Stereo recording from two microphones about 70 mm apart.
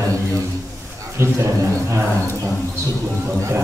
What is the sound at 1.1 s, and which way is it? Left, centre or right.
Speech, right.